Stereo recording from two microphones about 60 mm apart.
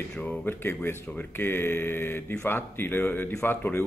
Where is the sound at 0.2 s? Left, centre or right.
Left.